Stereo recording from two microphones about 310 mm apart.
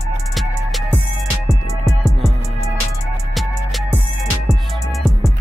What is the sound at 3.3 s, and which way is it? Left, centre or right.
Music, centre.